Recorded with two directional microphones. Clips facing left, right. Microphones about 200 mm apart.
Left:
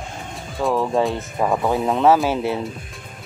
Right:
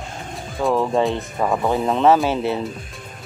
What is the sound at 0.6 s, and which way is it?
Speech, centre (ahead or behind).